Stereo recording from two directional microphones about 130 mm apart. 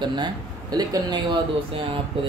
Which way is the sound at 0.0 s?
35° right (ahead or behind).